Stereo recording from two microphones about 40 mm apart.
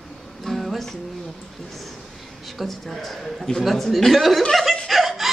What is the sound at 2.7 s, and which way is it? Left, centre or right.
A woman's voice, centre.